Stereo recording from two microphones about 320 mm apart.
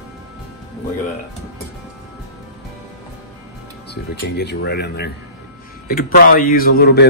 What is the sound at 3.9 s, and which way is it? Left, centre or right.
A man's voice, left.